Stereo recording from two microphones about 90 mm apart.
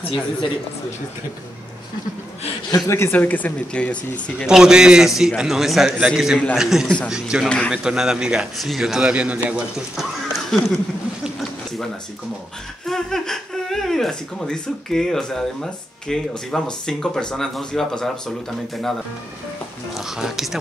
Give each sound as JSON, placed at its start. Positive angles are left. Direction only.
{"t": 0.0, "sound": "speech", "side_deg": 85}
{"t": 2.7, "sound": "speech", "side_deg": 30}
{"t": 4.5, "sound": "a man's voice", "side_deg": -5}
{"t": 7.4, "sound": "speech", "side_deg": 10}
{"t": 7.7, "sound": "a man's voice", "side_deg": -5}
{"t": 12.8, "sound": "speech", "side_deg": 5}
{"t": 19.9, "sound": "speech", "side_deg": -5}